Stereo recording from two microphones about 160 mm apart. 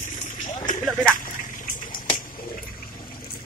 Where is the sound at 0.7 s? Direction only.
55° left (ahead or behind).